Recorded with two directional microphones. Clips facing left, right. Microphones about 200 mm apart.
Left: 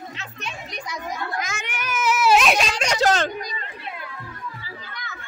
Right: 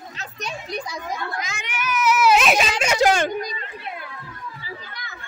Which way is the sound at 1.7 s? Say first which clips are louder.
Right 5 dB; 30° left (ahead or behind).